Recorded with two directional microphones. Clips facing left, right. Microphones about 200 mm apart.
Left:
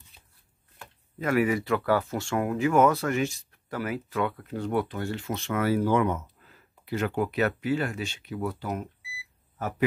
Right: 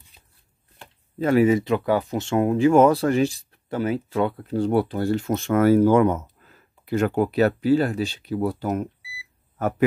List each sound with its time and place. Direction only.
0.7 s speech: 25° right (ahead or behind); by 8.8 s 45° right (ahead or behind)
9.6 s a man's voice: 55° right (ahead or behind)